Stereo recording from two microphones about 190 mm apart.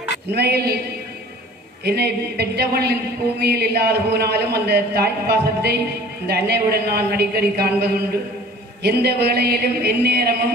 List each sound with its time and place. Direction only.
0.3 s speech: 55° right (ahead or behind)
1.9 s speech: 55° right (ahead or behind)